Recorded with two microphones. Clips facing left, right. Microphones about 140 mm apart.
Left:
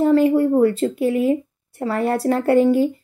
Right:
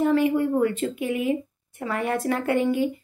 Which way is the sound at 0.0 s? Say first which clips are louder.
Left 6 dB; 35° left (ahead or behind).